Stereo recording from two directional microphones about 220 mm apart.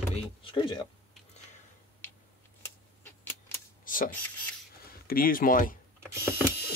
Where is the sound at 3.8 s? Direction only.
40° left (ahead or behind).